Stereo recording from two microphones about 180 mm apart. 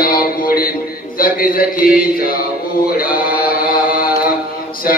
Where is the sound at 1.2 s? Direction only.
50° left (ahead or behind).